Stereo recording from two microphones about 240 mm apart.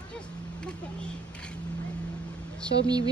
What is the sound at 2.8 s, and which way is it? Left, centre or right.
Speech, centre.